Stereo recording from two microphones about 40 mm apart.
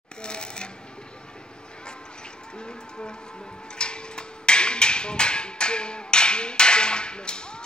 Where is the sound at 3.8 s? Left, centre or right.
Left.